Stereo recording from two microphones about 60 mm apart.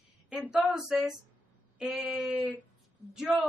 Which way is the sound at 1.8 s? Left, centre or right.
Right.